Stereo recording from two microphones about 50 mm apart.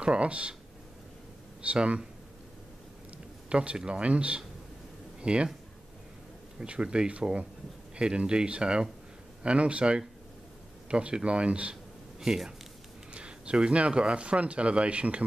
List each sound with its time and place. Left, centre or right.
0.0 s speech: right
1.6 s speech: right
3.4 s speech: centre
6.6 s speech: centre
12.2 s speech: centre
13.1 s speech: right